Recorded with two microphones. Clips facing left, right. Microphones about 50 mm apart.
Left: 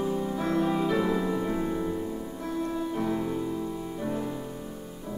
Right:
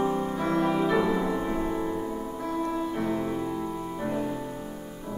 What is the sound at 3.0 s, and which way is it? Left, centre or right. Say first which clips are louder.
Music: right 1 dB; centre.